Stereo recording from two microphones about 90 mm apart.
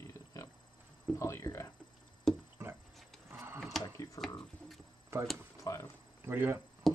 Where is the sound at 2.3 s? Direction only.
Centre (ahead or behind).